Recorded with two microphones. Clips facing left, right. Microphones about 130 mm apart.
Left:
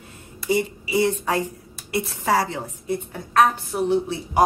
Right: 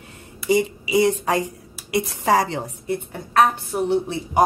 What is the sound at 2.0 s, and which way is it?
Speech, 15° right (ahead or behind).